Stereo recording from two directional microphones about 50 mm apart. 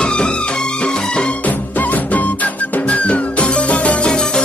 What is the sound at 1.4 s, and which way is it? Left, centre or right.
Music, left.